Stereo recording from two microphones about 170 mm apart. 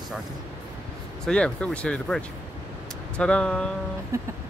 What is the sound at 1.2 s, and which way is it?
Speech, 5° left (ahead or behind).